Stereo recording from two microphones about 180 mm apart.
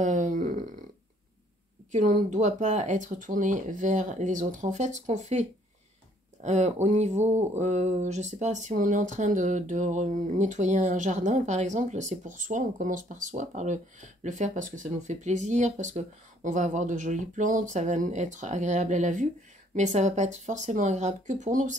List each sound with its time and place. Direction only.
0.0 s groan: 45° right (ahead or behind)
1.9 s speech: 45° right (ahead or behind)